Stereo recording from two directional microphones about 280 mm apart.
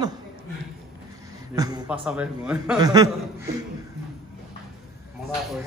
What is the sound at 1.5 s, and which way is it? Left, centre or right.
Speech, centre.